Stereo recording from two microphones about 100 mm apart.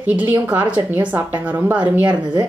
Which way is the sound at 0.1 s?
15° right (ahead or behind).